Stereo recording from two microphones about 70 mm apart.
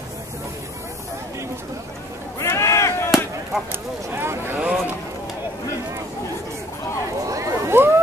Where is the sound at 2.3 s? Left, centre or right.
Left.